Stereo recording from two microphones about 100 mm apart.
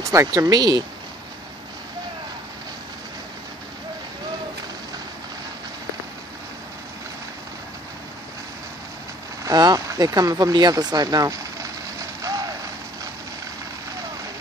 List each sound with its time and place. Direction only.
0.0 s speech: 30° right (ahead or behind)
9.4 s vehicle: 40° right (ahead or behind)